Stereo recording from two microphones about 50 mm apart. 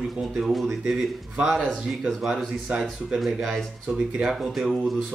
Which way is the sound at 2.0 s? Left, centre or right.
Centre.